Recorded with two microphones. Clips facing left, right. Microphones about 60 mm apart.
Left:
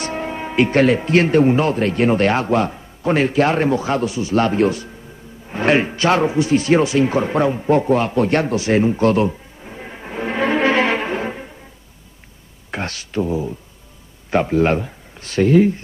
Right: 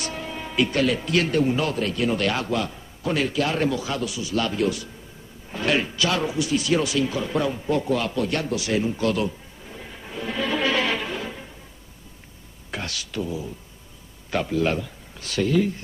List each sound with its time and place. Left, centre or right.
0.0 s a man's voice: left
12.7 s speech: left